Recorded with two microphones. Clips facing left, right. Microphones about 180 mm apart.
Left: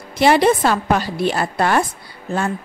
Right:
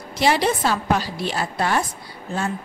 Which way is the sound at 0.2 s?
55° left (ahead or behind).